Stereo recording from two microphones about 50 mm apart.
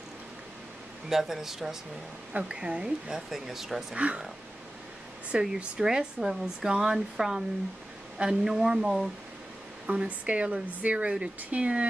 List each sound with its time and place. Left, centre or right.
1.0 s speech: centre
3.9 s speech: right
5.3 s speech: centre
9.8 s speech: right